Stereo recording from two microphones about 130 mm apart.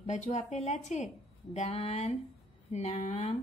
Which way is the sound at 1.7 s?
55° left (ahead or behind).